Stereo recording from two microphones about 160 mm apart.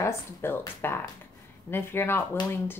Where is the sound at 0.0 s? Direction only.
15° left (ahead or behind).